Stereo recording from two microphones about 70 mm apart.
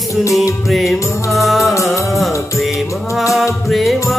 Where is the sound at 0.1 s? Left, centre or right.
Left.